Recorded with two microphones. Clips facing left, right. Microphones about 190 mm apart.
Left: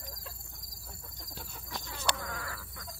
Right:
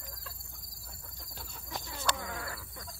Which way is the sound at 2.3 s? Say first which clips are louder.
Right 1 dB; 20° right (ahead or behind).